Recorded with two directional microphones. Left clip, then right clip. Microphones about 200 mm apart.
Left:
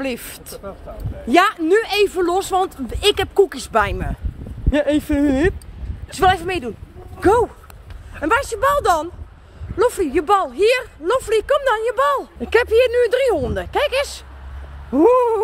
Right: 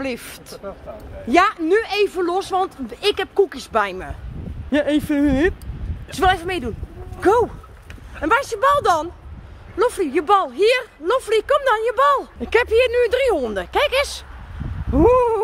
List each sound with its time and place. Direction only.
0.0 s speech: 15° left (ahead or behind)
14.9 s cat: 10° left (ahead or behind)